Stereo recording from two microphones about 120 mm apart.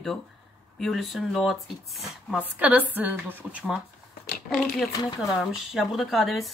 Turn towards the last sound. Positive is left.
turn(degrees=0)  # may be behind; listen again after turning